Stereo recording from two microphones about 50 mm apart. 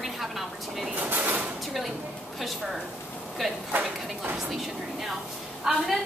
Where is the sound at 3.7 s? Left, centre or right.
Right.